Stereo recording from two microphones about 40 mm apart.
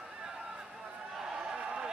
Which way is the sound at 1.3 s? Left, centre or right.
Right.